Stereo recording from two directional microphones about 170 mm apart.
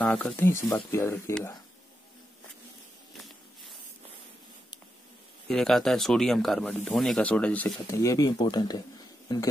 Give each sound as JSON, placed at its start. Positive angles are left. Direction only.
{"t": 0.0, "sound": "speech", "side_deg": 10}
{"t": 3.2, "sound": "a sound", "side_deg": 0}
{"t": 5.5, "sound": "speech", "side_deg": 0}
{"t": 7.9, "sound": "speech", "side_deg": 20}